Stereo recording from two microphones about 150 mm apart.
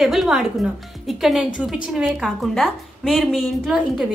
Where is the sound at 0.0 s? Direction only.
Centre (ahead or behind).